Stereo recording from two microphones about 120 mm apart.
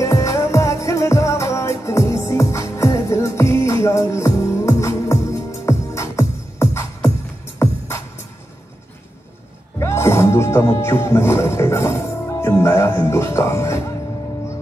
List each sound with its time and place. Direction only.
0.0 s music: 25° left (ahead or behind)
9.8 s speech: 20° left (ahead or behind)